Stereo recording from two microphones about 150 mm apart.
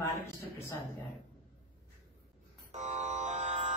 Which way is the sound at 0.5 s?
20° left (ahead or behind).